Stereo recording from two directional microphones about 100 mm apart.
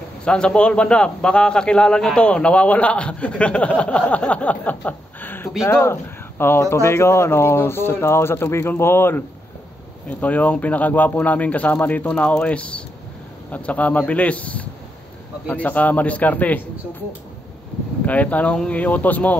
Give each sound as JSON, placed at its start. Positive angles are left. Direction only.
{"t": 0.2, "sound": "a man's voice", "side_deg": 10}
{"t": 18.0, "sound": "a man's voice", "side_deg": 15}